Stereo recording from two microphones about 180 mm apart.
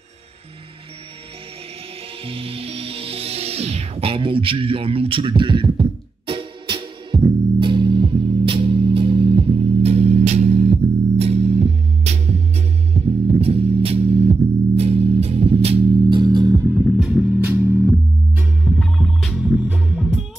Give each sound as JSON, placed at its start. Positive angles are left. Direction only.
{"t": 2.2, "sound": "music", "side_deg": -30}
{"t": 16.7, "sound": "music", "side_deg": -5}
{"t": 18.8, "sound": "music", "side_deg": 5}